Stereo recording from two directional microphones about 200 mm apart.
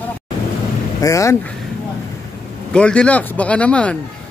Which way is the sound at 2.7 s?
5° left (ahead or behind).